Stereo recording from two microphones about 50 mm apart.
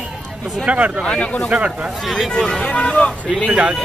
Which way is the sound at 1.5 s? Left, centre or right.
Right.